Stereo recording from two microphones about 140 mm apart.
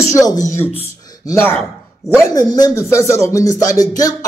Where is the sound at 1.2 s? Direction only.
15° left (ahead or behind).